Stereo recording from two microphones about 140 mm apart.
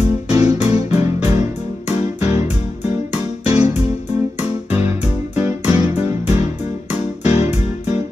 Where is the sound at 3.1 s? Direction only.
50° left (ahead or behind).